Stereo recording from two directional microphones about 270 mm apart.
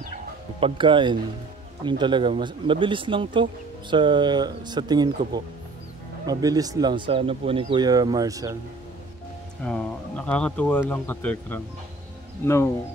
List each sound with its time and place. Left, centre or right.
0.6 s speech: centre
9.7 s speech: centre